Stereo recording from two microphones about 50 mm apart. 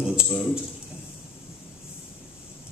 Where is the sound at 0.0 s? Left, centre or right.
Centre.